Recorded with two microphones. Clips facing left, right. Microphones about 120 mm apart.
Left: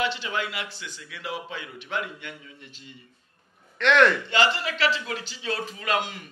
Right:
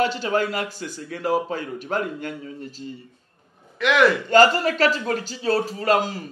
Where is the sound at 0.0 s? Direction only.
40° right (ahead or behind).